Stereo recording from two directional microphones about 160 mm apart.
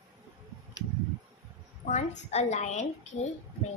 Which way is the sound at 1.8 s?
45° left (ahead or behind).